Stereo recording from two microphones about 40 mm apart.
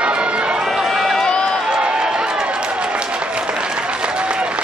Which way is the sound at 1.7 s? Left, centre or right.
Right.